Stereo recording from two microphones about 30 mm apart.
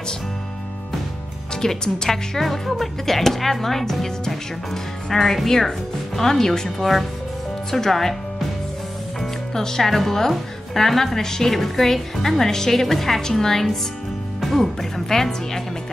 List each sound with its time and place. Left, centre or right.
1.5 s a woman's voice: left
9.2 s music: centre
9.8 s a woman's voice: centre